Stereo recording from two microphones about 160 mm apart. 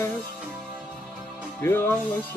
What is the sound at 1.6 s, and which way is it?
Music, 15° left (ahead or behind).